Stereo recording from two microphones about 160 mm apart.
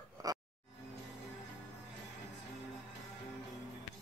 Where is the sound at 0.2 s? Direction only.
20° right (ahead or behind).